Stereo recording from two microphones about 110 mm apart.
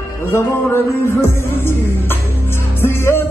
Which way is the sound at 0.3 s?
25° left (ahead or behind).